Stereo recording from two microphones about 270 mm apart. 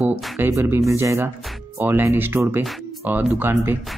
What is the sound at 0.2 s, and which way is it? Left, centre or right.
Speech, centre.